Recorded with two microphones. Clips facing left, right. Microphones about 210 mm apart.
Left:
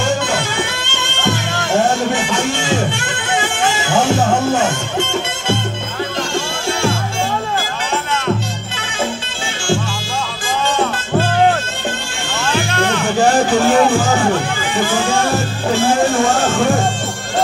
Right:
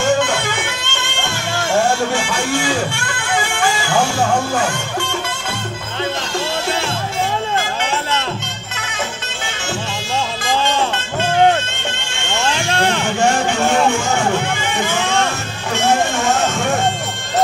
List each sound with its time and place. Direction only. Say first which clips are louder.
12.4 s music: left 1 dB; 30° right (ahead or behind)
13.2 s music: left 4 dB; 35° left (ahead or behind)